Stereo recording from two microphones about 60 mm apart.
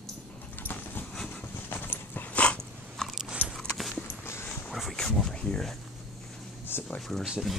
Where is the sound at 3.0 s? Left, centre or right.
Centre.